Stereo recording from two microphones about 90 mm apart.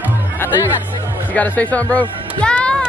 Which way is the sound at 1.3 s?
15° left (ahead or behind).